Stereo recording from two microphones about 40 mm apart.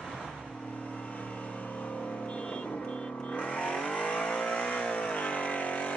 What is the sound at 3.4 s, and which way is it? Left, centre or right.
Vehicle, left.